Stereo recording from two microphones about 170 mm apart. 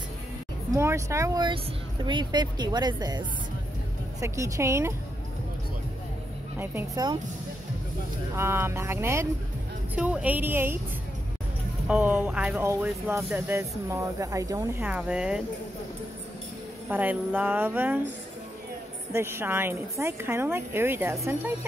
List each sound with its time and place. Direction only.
0.7 s a woman's voice: 15° right (ahead or behind)
6.6 s a woman's voice: 10° right (ahead or behind)
8.4 s a woman's voice: 15° right (ahead or behind)
11.9 s a woman's voice: 10° right (ahead or behind)
16.9 s a woman's voice: 10° right (ahead or behind)
19.1 s a woman's voice: 15° right (ahead or behind)